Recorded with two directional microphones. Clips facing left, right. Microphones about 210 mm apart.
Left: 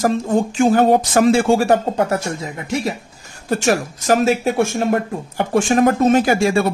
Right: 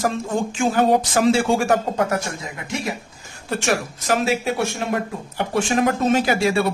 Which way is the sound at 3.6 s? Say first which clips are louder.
Left 4 dB; 45° left (ahead or behind).